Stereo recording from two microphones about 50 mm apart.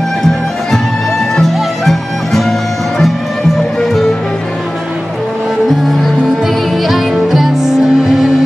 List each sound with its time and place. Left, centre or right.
1.3 s music: centre
6.4 s music: centre